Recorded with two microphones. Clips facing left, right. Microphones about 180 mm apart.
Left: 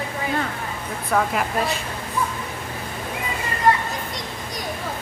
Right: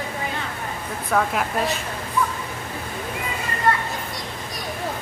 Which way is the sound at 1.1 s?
Centre (ahead or behind).